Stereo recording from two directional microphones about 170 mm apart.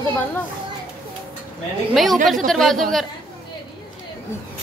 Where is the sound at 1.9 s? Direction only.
Centre (ahead or behind).